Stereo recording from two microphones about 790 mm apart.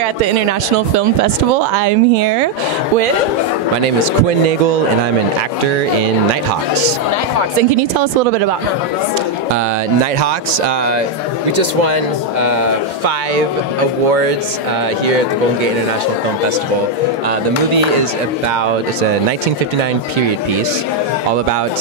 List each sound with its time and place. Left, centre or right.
0.5 s speech: right
11.8 s speech: right